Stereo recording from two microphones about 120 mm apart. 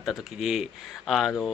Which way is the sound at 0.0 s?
Centre (ahead or behind).